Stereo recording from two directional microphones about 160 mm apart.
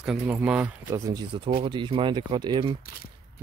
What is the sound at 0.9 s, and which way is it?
Speech, 20° right (ahead or behind).